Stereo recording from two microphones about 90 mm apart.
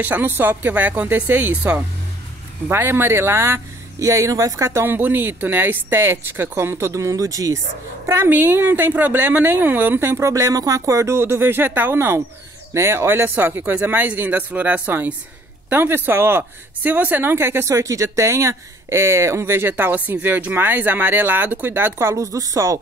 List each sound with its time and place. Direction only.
0.0 s speech: 20° right (ahead or behind); by 7.6 s 40° right (ahead or behind)
8.3 s speech: 25° right (ahead or behind); by 22.8 s 40° right (ahead or behind)